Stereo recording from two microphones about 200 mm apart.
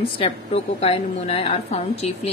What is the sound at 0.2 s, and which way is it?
A woman's voice, 30° left (ahead or behind).